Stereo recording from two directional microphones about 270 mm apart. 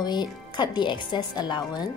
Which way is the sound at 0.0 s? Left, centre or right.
Centre.